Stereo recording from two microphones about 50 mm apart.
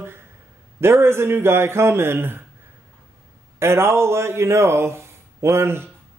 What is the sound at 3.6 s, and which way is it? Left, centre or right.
A man's voice, right.